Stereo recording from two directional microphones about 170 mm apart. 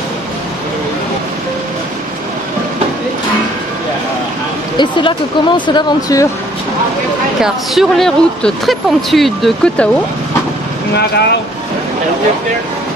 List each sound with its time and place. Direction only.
4.7 s speech: 30° left (ahead or behind)
7.4 s speech: centre (ahead or behind)
11.0 s speech: 75° left (ahead or behind)